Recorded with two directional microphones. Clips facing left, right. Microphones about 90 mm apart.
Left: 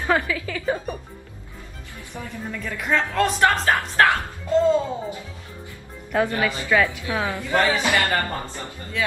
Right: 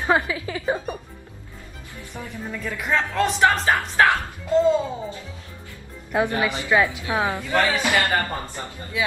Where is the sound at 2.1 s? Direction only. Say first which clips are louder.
Even; 5° right (ahead or behind).